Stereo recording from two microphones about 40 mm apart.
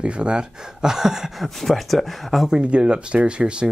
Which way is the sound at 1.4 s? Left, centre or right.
Centre.